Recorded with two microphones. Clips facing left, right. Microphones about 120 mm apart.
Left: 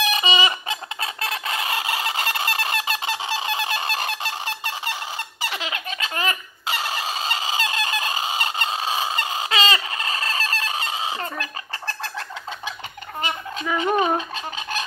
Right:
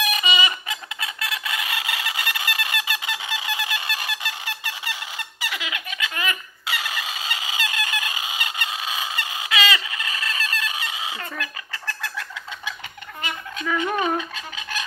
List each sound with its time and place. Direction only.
0.1 s fowl: 30° left (ahead or behind)
13.7 s fowl: 25° left (ahead or behind)